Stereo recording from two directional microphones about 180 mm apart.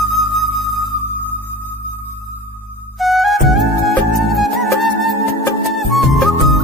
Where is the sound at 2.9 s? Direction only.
Centre (ahead or behind).